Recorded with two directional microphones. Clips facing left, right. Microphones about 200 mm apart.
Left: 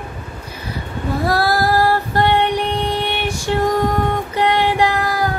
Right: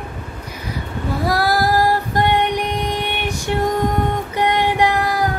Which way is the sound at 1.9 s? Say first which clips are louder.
Left 1 dB; 15° right (ahead or behind).